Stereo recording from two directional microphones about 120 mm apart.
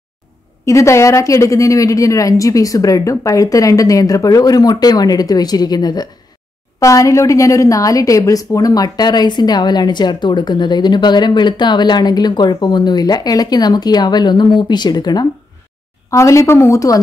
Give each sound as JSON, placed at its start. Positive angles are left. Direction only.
{"t": 0.7, "sound": "a woman's voice", "side_deg": 25}